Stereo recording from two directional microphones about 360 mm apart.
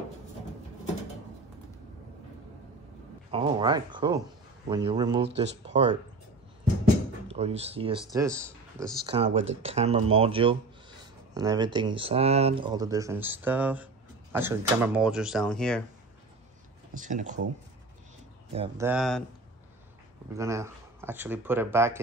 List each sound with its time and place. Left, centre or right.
3.3 s speech: centre
7.2 s speech: centre
16.9 s speech: right
18.5 s speech: centre
18.9 s speech: centre
20.3 s speech: centre